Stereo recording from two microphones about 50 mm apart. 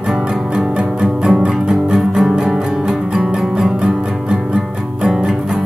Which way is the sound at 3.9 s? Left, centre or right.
Centre.